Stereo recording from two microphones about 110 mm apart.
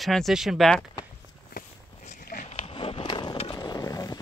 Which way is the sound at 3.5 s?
35° left (ahead or behind).